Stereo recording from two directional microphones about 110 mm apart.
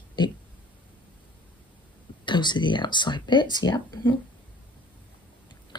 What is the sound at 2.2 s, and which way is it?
Speech, 45° left (ahead or behind).